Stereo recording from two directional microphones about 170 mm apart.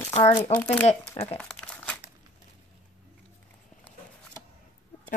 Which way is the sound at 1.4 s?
5° left (ahead or behind).